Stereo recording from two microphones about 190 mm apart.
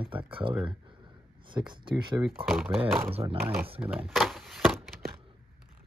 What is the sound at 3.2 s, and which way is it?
Speech, 20° right (ahead or behind).